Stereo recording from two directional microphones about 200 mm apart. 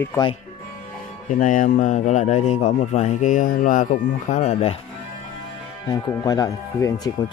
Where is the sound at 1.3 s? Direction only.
40° left (ahead or behind).